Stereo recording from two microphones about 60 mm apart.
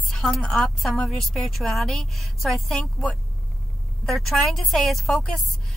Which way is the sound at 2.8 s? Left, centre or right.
Centre.